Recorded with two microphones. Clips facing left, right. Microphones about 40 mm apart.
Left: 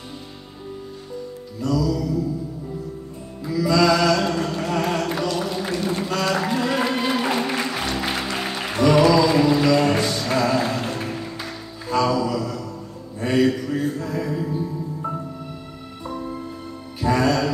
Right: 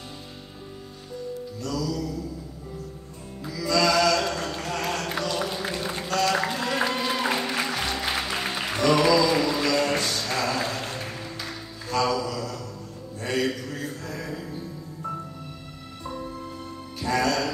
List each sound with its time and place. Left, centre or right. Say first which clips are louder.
1.6 s music: left 8 dB; centre
3.4 s music: left 5 dB; centre
9.1 s a sound: left 4 dB; centre
11.9 s mantra: left 5 dB; centre
13.2 s music: left 7 dB; centre
16.1 s music: left 4 dB; centre